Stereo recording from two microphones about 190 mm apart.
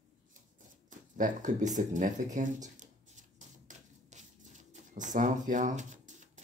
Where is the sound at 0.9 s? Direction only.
40° right (ahead or behind).